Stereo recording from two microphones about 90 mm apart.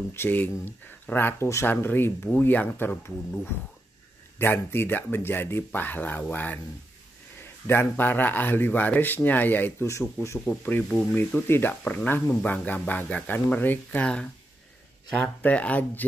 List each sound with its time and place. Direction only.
0.1 s speech: 25° left (ahead or behind)
4.4 s speech: 25° left (ahead or behind)
7.6 s speech: 25° left (ahead or behind)
10.2 s speech: 35° left (ahead or behind)
10.5 s speech: 15° left (ahead or behind)
11.4 s speech: 25° left (ahead or behind)
11.8 s speech: 15° left (ahead or behind)